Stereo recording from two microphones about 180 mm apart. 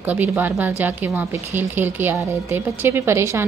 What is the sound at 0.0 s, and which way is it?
A woman's voice, 10° right (ahead or behind).